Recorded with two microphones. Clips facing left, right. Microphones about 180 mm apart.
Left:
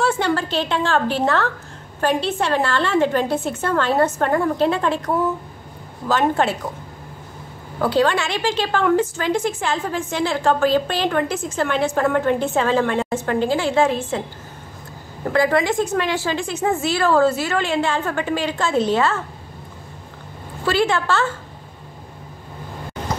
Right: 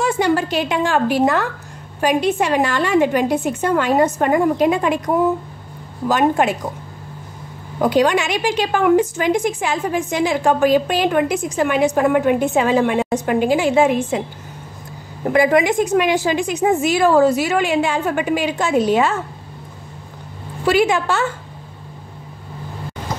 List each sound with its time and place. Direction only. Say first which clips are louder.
0.0 s a woman's voice: right 3 dB; 15° right (ahead or behind)
7.8 s a woman's voice: right 3 dB; 15° right (ahead or behind)
15.2 s a woman's voice: right 3 dB; 15° right (ahead or behind)
20.6 s a woman's voice: right 3 dB; 15° right (ahead or behind)